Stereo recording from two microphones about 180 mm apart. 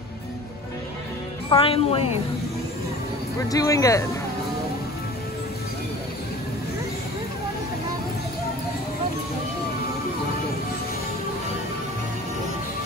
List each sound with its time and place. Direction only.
1.5 s speech: 30° left (ahead or behind)
3.4 s speech: 20° left (ahead or behind)